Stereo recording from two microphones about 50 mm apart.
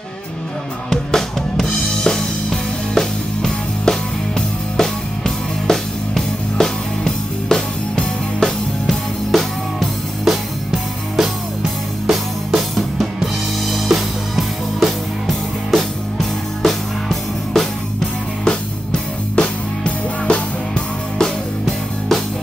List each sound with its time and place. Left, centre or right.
0.8 s music: centre
18.4 s music: centre
21.2 s music: centre